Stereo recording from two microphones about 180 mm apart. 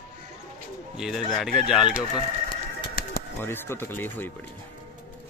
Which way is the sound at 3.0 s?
55° left (ahead or behind).